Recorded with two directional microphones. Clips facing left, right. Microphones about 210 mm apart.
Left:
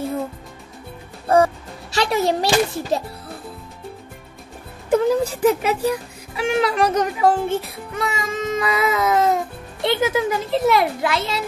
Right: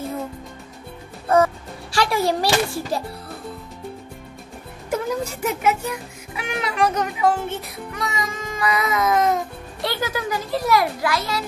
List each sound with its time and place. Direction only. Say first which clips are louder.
1.3 s speech: left 1 dB; 25° left (ahead or behind)
4.8 s a child's voice: left 7 dB; 30° left (ahead or behind)